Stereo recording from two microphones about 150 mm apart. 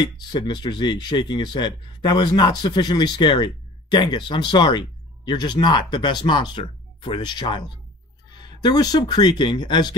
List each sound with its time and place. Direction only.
0.0 s speech: 30° left (ahead or behind)